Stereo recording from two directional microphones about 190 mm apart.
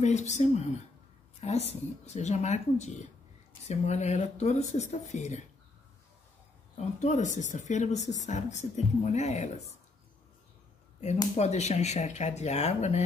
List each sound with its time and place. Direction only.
0.0 s a woman's voice: 40° left (ahead or behind)
1.7 s a woman's voice: 35° left (ahead or behind)
7.0 s a woman's voice: 40° left (ahead or behind)
11.3 s a woman's voice: 35° left (ahead or behind)